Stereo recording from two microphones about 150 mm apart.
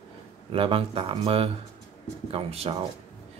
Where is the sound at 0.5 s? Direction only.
35° right (ahead or behind).